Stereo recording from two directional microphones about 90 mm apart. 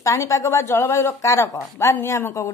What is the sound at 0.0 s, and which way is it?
A woman's voice, 35° left (ahead or behind).